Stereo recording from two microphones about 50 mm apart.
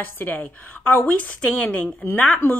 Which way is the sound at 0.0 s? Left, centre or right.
Left.